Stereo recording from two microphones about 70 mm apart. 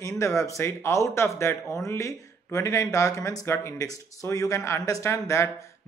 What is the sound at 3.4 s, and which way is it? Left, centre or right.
Speech, left.